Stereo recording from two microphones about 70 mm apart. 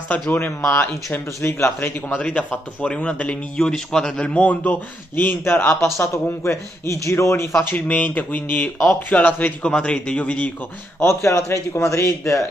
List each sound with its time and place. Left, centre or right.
0.1 s a sound: centre
1.1 s speech: left
2.2 s speech: centre
5.9 s a man's voice: left
7.7 s a sound: left
8.5 s speech: centre
11.0 s a man's voice: left